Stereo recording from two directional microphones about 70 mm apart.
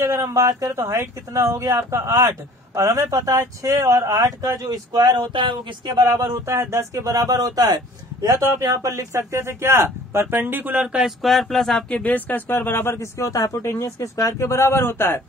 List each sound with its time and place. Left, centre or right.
0.0 s speech: right
5.9 s speech: right
7.2 s a man's voice: right
8.4 s speech: right
10.9 s speech: centre
11.9 s speech: centre; by 13.1 s left
13.2 s speech: left